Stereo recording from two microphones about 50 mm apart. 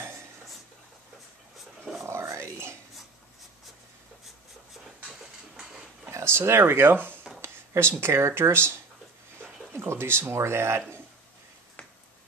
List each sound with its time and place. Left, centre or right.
2.0 s a sound: right
6.0 s speech: right
7.4 s speech: right